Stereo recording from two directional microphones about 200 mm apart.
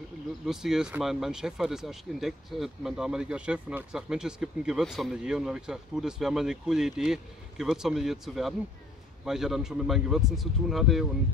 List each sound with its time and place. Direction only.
0.5 s speech: centre (ahead or behind)